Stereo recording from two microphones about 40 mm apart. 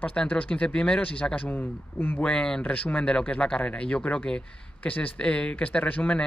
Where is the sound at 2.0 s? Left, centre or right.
Left.